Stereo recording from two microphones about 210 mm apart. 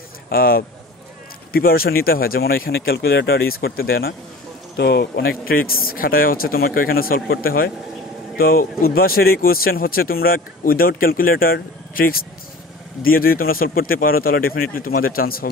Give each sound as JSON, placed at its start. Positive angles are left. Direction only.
{"t": 0.3, "sound": "speech", "side_deg": 45}